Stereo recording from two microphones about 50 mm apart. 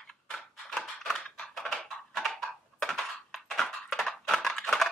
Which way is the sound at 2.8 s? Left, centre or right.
Centre.